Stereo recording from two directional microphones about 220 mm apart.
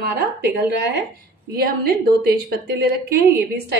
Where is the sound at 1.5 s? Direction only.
45° right (ahead or behind).